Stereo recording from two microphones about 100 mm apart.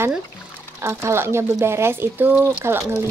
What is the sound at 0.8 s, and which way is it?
Speech, 25° right (ahead or behind).